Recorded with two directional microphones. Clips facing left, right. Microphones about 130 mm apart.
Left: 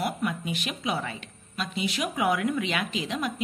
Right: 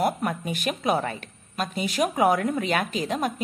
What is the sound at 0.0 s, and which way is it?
A woman's voice, 45° right (ahead or behind).